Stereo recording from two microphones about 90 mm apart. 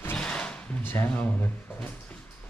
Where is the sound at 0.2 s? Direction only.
15° left (ahead or behind).